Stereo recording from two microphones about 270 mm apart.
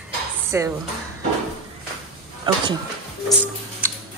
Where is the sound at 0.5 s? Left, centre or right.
Centre.